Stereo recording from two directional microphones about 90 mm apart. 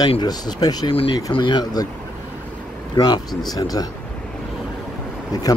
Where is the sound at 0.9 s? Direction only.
90° left; by 1.8 s 55° left (ahead or behind).